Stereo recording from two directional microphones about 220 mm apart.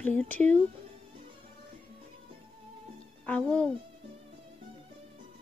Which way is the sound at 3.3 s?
5° left (ahead or behind).